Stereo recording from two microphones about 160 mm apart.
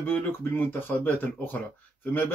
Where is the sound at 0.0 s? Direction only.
10° left (ahead or behind).